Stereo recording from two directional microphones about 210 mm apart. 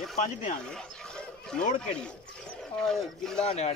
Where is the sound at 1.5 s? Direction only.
5° left (ahead or behind).